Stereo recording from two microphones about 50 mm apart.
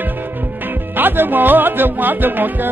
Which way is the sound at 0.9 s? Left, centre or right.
Right.